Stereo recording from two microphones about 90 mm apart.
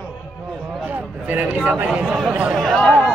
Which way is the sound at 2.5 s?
5° left (ahead or behind).